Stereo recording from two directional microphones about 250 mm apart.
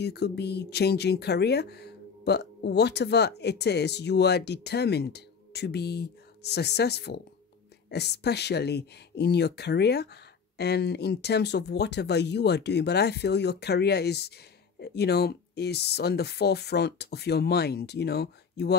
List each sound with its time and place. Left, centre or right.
0.0 s speech: left